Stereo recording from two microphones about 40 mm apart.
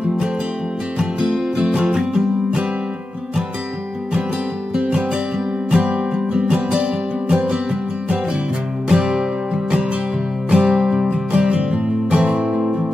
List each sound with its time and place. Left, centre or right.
0.9 s music: centre
1.7 s music: right
5.8 s music: right
8.8 s music: centre
10.8 s music: centre
11.1 s music: right